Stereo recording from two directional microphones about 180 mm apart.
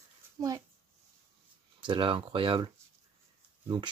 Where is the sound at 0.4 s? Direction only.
20° right (ahead or behind).